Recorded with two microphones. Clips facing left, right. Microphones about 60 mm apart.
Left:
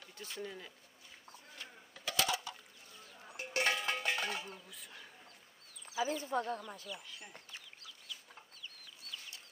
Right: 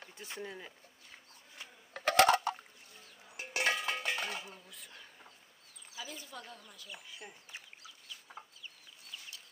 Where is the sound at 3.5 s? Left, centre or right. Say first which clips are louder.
Right 1 dB; centre.